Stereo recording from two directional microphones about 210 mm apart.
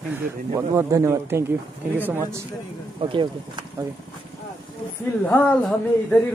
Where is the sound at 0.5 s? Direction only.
15° right (ahead or behind).